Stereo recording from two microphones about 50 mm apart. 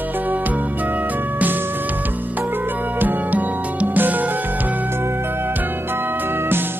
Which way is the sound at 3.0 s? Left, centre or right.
Right.